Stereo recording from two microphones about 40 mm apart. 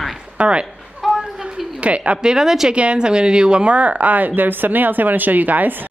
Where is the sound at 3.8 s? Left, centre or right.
Right.